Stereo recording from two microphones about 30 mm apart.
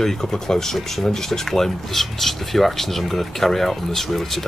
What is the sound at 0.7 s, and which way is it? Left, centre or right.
Speech, centre.